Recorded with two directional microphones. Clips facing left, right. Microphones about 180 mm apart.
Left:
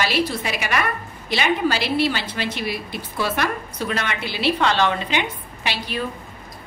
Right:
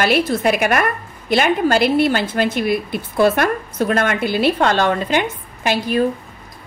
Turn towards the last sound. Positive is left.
turn(degrees=-45)  # may be behind; listen again after turning